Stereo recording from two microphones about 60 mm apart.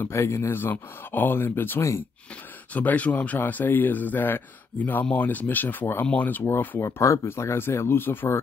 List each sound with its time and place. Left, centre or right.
0.1 s speech: left
1.8 s speech: left
2.7 s speech: left
6.8 s speech: left
7.2 s speech: left